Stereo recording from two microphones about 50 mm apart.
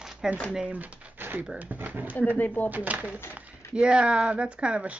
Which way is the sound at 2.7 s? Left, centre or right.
Right.